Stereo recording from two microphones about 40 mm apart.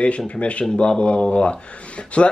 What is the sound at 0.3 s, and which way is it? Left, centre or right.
Speech, left.